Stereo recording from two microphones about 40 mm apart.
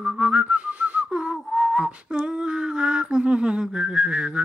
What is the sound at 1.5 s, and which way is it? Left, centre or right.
Whistling, centre.